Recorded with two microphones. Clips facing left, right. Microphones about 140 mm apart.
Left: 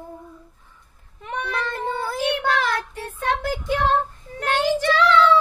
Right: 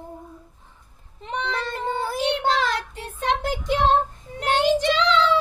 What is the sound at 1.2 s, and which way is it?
A child's voice, 20° right (ahead or behind).